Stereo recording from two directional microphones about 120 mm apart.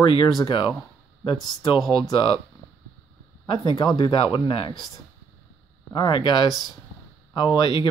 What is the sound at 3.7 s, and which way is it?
Speech, 40° left (ahead or behind).